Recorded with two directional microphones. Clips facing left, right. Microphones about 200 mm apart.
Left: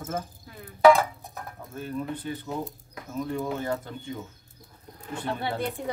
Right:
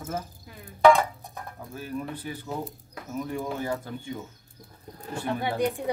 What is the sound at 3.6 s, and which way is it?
Speech, 10° right (ahead or behind).